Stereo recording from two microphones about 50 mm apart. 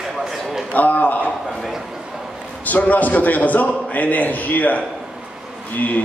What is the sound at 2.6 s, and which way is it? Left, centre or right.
A man's voice, left.